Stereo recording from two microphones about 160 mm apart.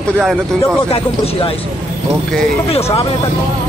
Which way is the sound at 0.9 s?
35° left (ahead or behind).